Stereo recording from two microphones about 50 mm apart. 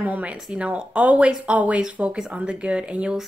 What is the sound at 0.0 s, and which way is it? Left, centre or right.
A woman's voice, right.